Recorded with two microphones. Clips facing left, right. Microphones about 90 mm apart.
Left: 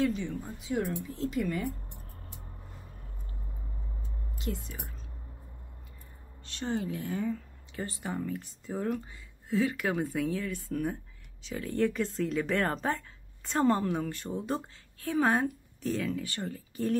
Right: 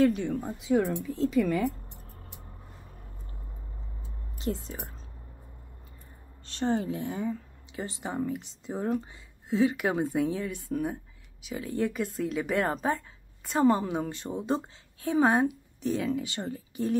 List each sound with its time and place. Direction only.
0.0 s speech: 65° right (ahead or behind)
1.4 s speech: 90° right
4.4 s speech: 30° right (ahead or behind)
6.4 s a woman's voice: 35° right (ahead or behind); by 17.0 s 15° right (ahead or behind)